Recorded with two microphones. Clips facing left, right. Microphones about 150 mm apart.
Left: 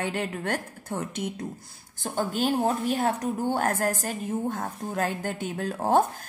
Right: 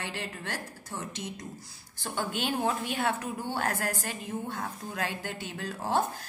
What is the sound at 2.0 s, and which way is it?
A woman's voice, 45° left (ahead or behind).